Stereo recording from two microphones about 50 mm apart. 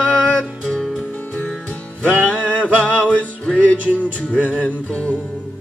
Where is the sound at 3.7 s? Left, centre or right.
Left.